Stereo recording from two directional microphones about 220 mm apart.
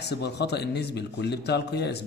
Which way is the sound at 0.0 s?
50° left (ahead or behind).